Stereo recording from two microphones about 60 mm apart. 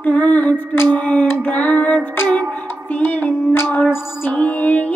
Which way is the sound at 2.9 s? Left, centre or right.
Left.